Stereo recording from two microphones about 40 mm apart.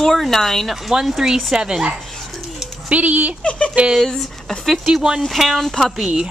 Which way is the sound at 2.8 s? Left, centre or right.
Right.